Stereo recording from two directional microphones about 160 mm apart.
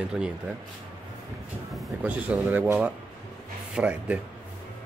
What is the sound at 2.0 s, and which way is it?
Speech, 10° right (ahead or behind).